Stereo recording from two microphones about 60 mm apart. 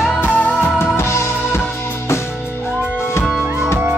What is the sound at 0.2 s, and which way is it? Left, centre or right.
Music, left.